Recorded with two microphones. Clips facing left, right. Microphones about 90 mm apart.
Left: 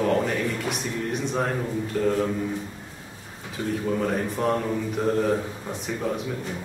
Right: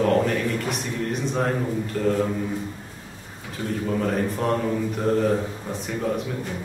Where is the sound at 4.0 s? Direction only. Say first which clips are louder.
Right 1 dB; 5° left (ahead or behind).